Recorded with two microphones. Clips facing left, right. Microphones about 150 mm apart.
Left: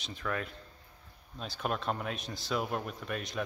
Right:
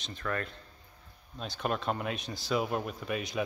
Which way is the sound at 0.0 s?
5° left (ahead or behind).